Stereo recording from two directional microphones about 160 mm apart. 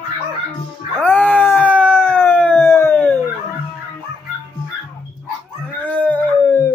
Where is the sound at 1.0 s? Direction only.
10° left (ahead or behind).